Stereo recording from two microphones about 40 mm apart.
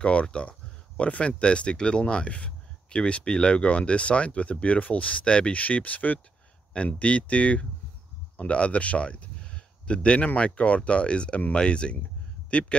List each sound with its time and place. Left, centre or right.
0.0 s speech: left
5.6 s speech: left